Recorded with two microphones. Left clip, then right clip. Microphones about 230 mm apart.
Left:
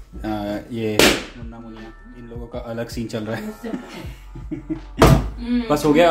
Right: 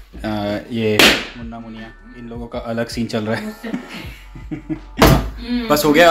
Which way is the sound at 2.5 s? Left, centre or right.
Right.